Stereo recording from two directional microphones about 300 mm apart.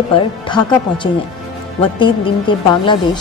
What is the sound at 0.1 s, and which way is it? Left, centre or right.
A woman's voice, centre.